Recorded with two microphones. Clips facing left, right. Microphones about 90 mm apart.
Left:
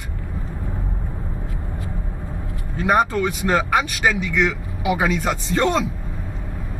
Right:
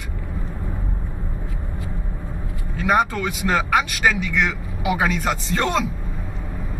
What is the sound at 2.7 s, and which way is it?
Speech, 30° left (ahead or behind).